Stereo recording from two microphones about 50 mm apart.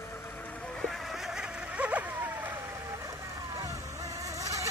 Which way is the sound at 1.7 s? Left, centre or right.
Right.